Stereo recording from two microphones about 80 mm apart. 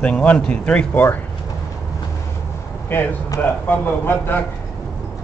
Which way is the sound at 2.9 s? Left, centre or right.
Left.